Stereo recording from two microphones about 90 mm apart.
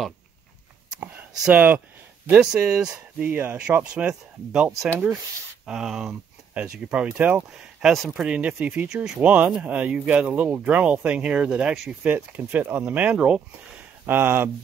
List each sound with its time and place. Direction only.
1.5 s speech: 15° right (ahead or behind)
2.4 s speech: 5° right (ahead or behind)
3.2 s speech: 20° right (ahead or behind)
7.5 s speech: 5° right (ahead or behind); by 14.5 s 25° right (ahead or behind)